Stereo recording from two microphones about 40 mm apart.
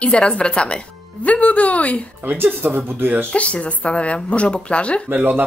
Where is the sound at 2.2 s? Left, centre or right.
Right.